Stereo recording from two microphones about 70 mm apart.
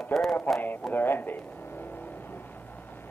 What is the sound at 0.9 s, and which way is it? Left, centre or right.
Speech, left.